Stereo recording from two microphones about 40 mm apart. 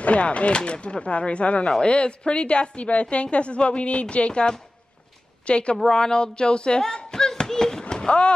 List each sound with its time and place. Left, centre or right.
0.0 s a woman's voice: left
5.8 s speech: centre